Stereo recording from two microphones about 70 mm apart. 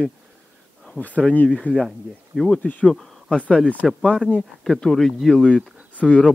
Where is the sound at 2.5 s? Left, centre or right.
Centre.